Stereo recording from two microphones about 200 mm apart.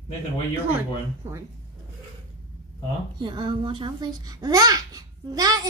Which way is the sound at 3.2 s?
25° right (ahead or behind).